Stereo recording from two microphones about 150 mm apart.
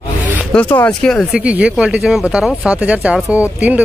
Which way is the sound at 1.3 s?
10° right (ahead or behind).